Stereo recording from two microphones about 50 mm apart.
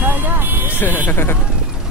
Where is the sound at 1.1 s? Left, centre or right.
Left.